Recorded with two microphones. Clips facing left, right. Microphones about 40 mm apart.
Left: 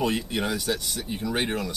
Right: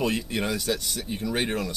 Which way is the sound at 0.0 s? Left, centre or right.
Centre.